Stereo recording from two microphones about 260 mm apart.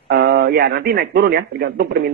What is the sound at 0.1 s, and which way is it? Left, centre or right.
Speech, right.